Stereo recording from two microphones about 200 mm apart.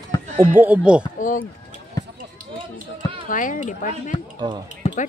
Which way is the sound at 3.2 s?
40° left (ahead or behind).